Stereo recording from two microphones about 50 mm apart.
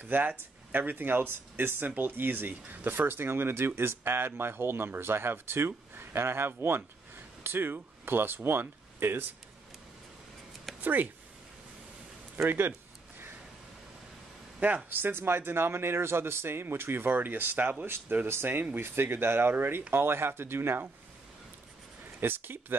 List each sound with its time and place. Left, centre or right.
0.0 s speech: right
10.8 s speech: right
12.4 s speech: right
14.9 s speech: right
18.8 s speech: right
22.2 s speech: right